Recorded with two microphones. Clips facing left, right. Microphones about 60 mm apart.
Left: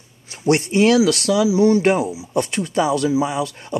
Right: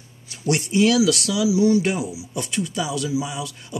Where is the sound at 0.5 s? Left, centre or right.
Left.